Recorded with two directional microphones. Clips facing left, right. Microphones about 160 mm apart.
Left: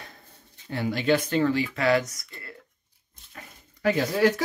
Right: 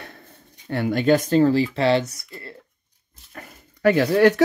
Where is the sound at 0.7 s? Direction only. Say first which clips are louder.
Right 5 dB; 60° right (ahead or behind); by 2.5 s 30° right (ahead or behind).